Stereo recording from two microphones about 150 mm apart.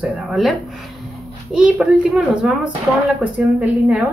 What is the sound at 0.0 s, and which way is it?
A woman's voice, centre (ahead or behind).